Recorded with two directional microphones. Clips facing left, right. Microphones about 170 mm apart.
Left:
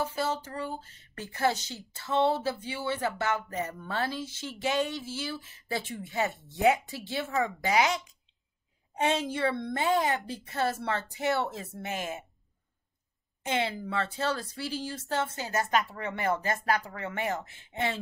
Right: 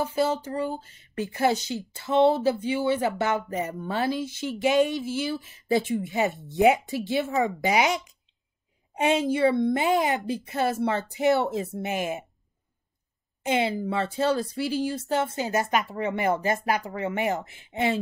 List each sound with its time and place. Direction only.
0.0 s speech: 15° right (ahead or behind)
13.5 s speech: 15° right (ahead or behind)